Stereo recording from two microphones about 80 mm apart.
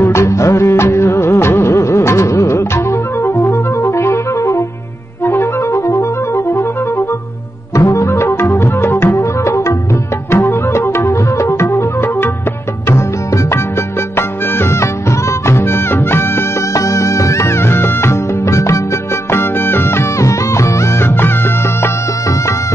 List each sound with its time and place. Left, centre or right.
0.0 s music: left
7.7 s music: left
14.1 s music: left
16.7 s music: left